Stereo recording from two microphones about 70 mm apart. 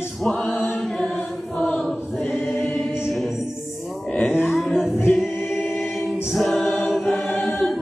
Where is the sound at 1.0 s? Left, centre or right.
Left.